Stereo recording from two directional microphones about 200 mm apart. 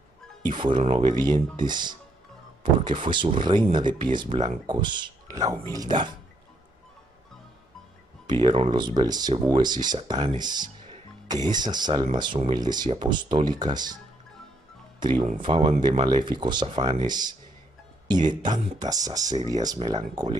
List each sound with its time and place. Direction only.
0.4 s speech: 25° right (ahead or behind)
8.3 s speech: 25° right (ahead or behind)
15.0 s speech: 25° right (ahead or behind)